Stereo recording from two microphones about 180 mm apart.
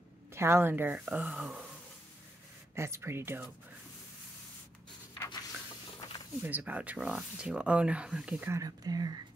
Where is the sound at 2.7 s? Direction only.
15° right (ahead or behind).